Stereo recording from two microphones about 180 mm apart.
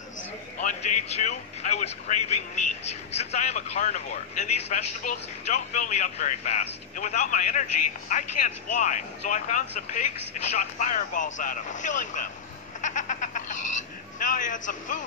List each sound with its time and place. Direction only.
0.6 s a man's voice: 45° left (ahead or behind)
12.8 s frog: 45° left (ahead or behind)